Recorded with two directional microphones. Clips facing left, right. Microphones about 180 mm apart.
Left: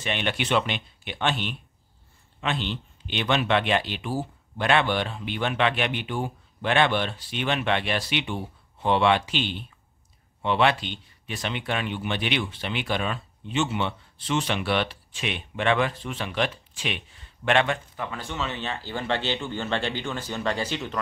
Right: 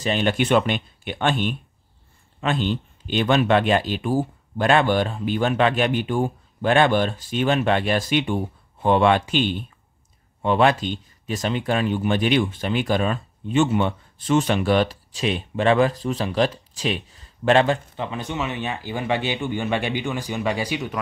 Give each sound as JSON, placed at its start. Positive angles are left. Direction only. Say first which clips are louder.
{"t": 0.0, "sound": "speech", "louder": "right 7 dB", "side_deg": -40}
{"t": 17.9, "sound": "speech", "louder": "right 5 dB", "side_deg": -20}